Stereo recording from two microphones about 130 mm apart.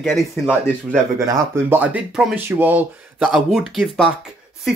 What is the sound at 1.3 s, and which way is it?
Speech, 20° right (ahead or behind).